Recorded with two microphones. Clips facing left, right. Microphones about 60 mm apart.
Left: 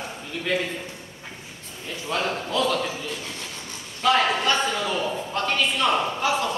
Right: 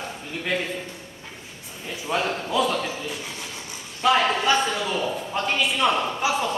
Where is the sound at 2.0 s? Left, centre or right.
Centre.